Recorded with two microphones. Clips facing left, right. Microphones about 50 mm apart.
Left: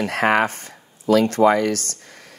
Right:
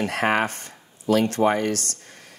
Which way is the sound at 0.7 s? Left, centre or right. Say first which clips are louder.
Left 4 dB; left.